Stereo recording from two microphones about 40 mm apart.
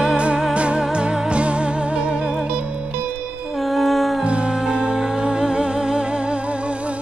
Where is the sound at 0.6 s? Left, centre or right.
Right.